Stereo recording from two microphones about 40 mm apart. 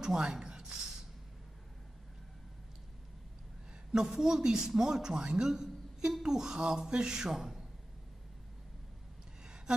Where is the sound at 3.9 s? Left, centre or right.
Centre.